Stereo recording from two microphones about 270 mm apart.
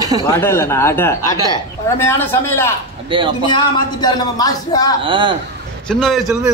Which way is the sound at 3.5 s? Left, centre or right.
Centre.